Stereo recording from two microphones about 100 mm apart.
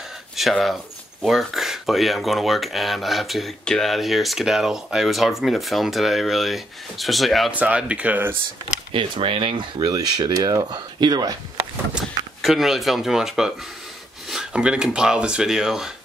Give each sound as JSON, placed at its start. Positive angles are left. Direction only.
{"t": 0.4, "sound": "speech", "side_deg": 0}
{"t": 7.5, "sound": "speech", "side_deg": -15}
{"t": 8.9, "sound": "speech", "side_deg": -65}
{"t": 9.8, "sound": "speech", "side_deg": -40}
{"t": 12.4, "sound": "speech", "side_deg": 0}